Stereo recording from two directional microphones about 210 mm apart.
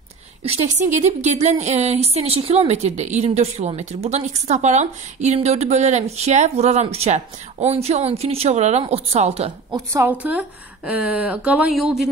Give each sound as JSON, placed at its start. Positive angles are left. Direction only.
{"t": 1.2, "sound": "a woman's voice", "side_deg": -35}
{"t": 9.8, "sound": "a woman's voice", "side_deg": -10}